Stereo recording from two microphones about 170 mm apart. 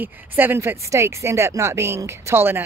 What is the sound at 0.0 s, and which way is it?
Speech, 10° right (ahead or behind).